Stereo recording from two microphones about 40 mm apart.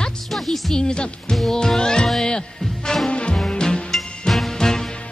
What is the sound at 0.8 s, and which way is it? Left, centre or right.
Speech, left.